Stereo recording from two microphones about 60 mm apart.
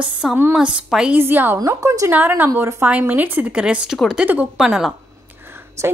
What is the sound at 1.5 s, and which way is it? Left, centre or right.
Speech, right.